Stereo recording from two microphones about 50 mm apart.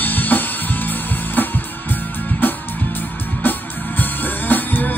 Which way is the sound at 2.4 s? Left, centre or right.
Left.